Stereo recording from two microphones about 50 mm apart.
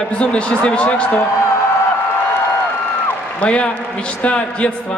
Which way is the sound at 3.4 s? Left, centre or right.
Left.